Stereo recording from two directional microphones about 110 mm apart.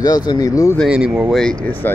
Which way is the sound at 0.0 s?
35° left (ahead or behind).